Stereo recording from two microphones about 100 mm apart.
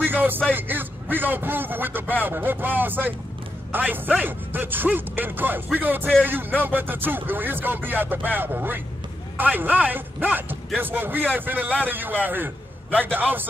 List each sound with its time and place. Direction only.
0.0 s music: 20° right (ahead or behind)
0.6 s a man's voice: 20° right (ahead or behind)